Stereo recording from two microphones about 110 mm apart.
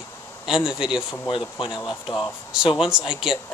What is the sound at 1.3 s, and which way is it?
Speech, 50° left (ahead or behind).